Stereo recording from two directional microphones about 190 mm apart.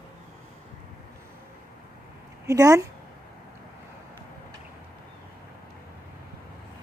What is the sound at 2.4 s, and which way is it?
Speech, 15° right (ahead or behind).